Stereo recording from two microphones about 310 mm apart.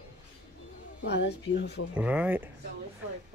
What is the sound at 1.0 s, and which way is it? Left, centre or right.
Speech, left.